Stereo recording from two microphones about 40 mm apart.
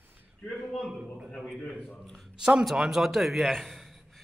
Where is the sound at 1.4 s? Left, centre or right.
Centre.